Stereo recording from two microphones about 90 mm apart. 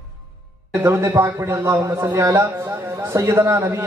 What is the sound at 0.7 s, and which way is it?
A man's voice, 30° right (ahead or behind).